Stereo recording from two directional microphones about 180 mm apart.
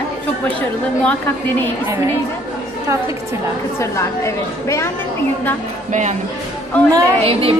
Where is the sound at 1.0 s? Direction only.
10° left (ahead or behind).